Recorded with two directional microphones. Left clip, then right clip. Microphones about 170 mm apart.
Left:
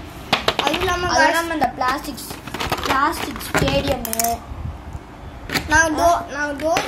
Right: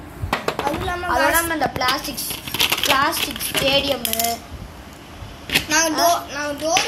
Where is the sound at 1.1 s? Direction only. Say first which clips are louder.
Even; centre (ahead or behind).